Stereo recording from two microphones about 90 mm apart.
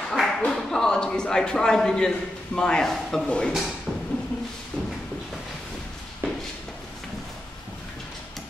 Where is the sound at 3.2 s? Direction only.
10° left (ahead or behind).